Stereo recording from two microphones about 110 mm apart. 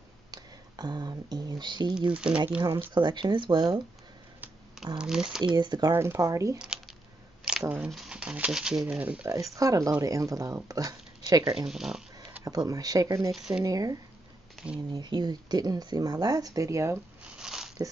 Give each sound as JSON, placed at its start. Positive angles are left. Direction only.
{"t": 0.3, "sound": "speech", "side_deg": -40}
{"t": 2.1, "sound": "speech", "side_deg": -10}
{"t": 2.9, "sound": "speech", "side_deg": -45}
{"t": 4.9, "sound": "speech", "side_deg": -5}
{"t": 5.4, "sound": "speech", "side_deg": -40}
{"t": 5.9, "sound": "speech", "side_deg": -25}
{"t": 7.7, "sound": "speech", "side_deg": -5}
{"t": 9.3, "sound": "speech", "side_deg": -30}
{"t": 11.5, "sound": "speech", "side_deg": -5}
{"t": 12.4, "sound": "speech", "side_deg": -35}
{"t": 13.3, "sound": "speech", "side_deg": -5}
{"t": 13.7, "sound": "speech", "side_deg": -35}
{"t": 17.2, "sound": "a sound", "side_deg": -10}